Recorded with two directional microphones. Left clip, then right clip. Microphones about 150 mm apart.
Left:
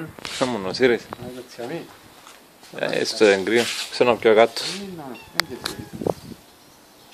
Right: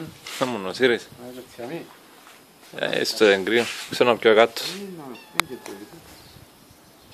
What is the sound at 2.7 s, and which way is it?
Speech, 5° right (ahead or behind).